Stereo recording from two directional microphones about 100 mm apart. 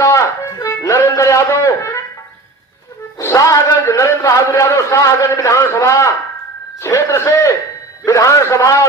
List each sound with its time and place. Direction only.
0.0 s music: 30° left (ahead or behind)
3.2 s a man's voice: 30° left (ahead or behind)